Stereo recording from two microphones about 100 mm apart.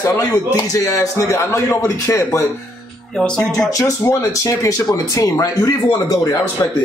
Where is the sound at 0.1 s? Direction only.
35° left (ahead or behind).